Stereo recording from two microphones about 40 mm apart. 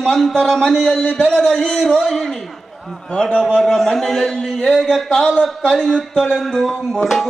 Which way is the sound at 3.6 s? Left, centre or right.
Centre.